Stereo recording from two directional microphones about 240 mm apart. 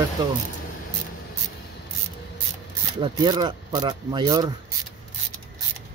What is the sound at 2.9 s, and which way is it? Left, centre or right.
Speech, centre.